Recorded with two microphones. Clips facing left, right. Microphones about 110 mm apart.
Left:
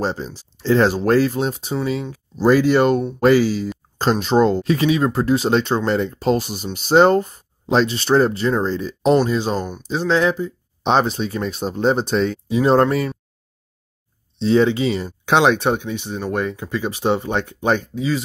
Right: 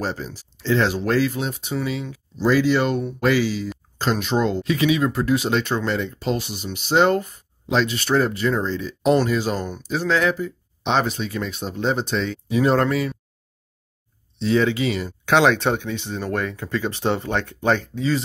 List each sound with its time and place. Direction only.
0.0 s speech: 25° left (ahead or behind)
0.6 s speech: 40° left (ahead or behind)
9.1 s speech: 25° left (ahead or behind); by 12.4 s 40° left (ahead or behind)
12.4 s speech: 25° left (ahead or behind)
12.9 s speech: 45° left (ahead or behind)
14.4 s speech: 30° left (ahead or behind); by 18.2 s 10° left (ahead or behind)